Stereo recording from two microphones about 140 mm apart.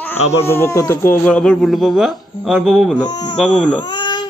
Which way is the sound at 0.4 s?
20° left (ahead or behind).